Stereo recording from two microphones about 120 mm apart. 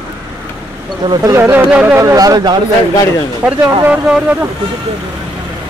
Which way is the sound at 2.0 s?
30° right (ahead or behind).